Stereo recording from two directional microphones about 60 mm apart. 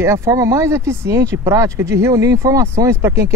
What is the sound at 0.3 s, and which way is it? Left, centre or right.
Speech, right.